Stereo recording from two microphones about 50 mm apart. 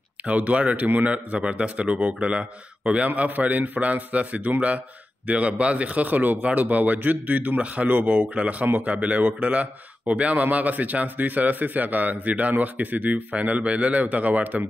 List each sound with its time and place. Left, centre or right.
0.2 s speech: right